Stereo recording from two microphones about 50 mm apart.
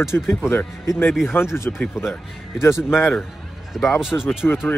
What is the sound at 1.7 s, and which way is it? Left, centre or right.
Speech, left.